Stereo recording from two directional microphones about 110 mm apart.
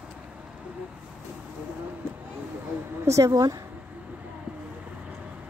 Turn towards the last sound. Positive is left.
turn(degrees=-35)  # may be behind; listen again after turning